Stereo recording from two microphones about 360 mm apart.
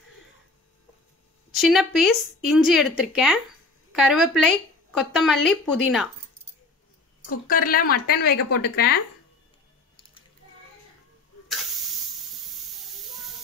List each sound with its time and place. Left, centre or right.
1.5 s speech: centre
7.2 s speech: left
12.8 s hiss: centre